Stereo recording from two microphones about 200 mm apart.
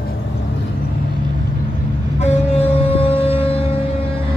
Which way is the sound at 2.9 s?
30° left (ahead or behind).